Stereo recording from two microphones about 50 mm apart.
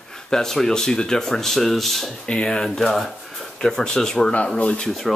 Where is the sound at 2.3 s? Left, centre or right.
Centre.